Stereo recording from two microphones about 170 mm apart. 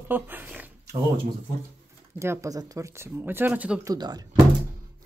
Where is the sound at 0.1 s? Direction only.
10° right (ahead or behind).